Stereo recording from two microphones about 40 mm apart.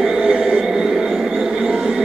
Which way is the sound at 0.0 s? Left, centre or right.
Centre.